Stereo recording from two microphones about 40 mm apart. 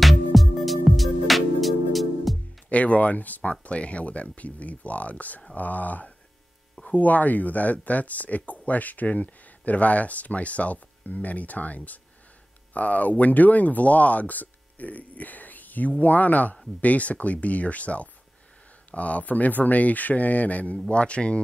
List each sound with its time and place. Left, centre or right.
0.0 s music: centre
2.7 s speech: left
3.6 s speech: left